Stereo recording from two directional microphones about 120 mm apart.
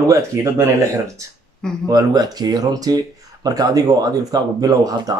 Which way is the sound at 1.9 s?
30° right (ahead or behind).